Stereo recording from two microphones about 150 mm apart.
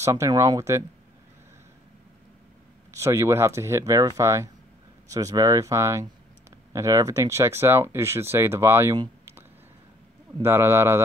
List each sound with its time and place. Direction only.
0.0 s speech: 20° right (ahead or behind)
2.9 s speech: 20° right (ahead or behind)
10.4 s speech: 15° right (ahead or behind)